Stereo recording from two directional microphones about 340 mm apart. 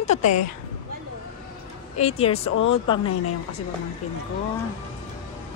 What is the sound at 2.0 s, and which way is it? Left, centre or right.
Speech, centre.